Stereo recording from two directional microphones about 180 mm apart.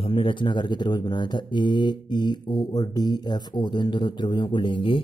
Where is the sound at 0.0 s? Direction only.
30° left (ahead or behind).